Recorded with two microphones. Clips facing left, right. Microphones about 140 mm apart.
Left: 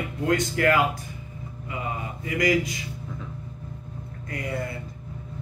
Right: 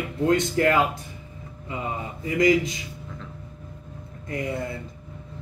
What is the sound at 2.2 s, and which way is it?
Speech, 20° right (ahead or behind).